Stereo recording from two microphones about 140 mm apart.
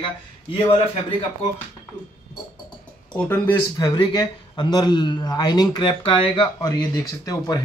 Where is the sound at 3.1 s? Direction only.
10° left (ahead or behind).